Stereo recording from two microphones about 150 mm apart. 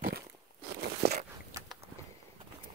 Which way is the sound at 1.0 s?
90° right.